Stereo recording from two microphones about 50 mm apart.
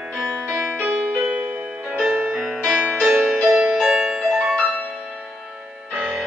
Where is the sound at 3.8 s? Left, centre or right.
Centre.